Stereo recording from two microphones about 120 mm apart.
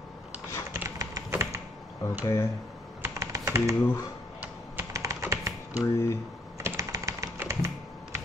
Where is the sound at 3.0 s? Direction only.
25° right (ahead or behind).